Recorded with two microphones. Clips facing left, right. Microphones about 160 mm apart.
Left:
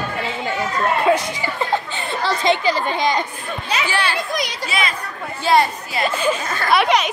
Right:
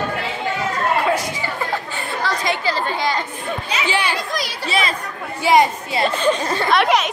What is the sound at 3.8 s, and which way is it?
Speech, 15° right (ahead or behind).